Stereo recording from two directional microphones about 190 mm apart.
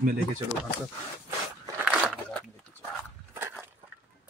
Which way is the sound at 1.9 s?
Centre (ahead or behind).